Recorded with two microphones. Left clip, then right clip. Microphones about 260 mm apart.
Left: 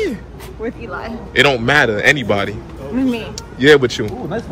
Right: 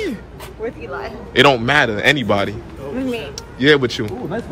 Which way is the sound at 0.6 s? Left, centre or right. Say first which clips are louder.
Left 1 dB; left.